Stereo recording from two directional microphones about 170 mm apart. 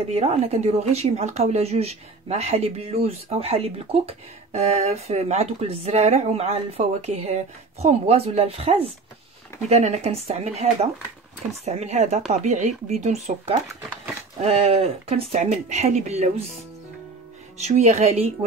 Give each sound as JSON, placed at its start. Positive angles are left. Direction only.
{"t": 0.1, "sound": "speech", "side_deg": -35}
{"t": 17.6, "sound": "speech", "side_deg": -40}